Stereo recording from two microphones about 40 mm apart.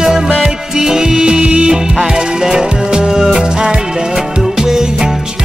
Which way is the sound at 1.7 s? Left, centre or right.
Centre.